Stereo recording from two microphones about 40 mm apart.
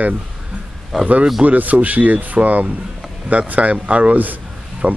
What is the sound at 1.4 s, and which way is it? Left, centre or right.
Speech, right.